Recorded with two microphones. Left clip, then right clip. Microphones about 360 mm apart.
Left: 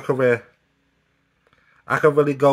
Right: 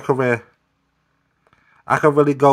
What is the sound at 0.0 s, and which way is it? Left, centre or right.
Speech, centre.